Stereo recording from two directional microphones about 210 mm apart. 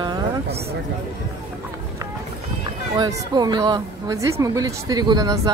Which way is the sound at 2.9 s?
20° right (ahead or behind).